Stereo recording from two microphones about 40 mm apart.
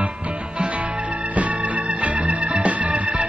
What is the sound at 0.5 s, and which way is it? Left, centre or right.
Music, right.